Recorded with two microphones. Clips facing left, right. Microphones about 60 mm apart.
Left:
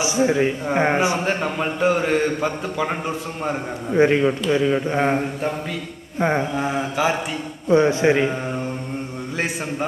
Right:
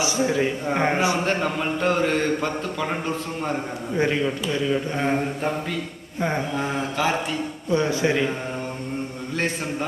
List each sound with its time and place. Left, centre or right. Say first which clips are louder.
0.0 s speech: left 3 dB; left
1.2 s speech: left 1 dB; centre
3.9 s a man's voice: left 6 dB; left
6.1 s mantra: left 5 dB; left
6.5 s speech: left 3 dB; centre
7.7 s a man's voice: left 6 dB; left